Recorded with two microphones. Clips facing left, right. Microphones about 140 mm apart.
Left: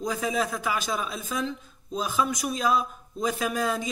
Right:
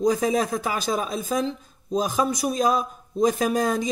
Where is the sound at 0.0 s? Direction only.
40° right (ahead or behind).